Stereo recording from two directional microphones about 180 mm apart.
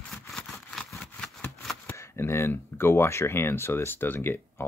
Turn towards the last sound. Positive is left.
turn(degrees=10)  # may be behind; listen again after turning